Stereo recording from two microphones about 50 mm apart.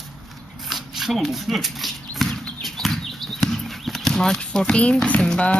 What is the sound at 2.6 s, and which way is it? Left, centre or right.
Clip-clop, centre.